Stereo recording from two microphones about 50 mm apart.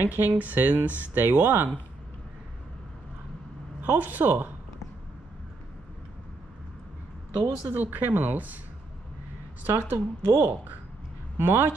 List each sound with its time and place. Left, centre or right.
0.0 s speech: right
3.8 s speech: right
7.4 s speech: right
9.8 s speech: right